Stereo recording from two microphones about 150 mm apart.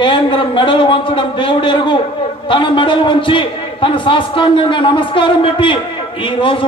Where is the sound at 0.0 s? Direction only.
35° left (ahead or behind).